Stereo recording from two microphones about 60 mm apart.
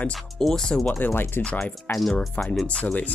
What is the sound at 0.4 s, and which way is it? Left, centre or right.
Speech, centre.